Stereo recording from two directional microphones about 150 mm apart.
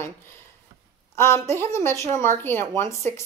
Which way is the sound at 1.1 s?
15° left (ahead or behind).